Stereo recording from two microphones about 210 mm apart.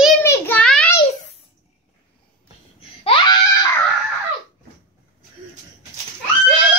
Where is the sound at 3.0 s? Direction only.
25° left (ahead or behind).